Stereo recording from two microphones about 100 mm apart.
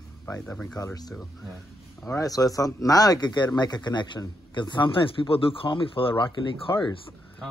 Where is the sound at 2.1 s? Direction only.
35° left (ahead or behind).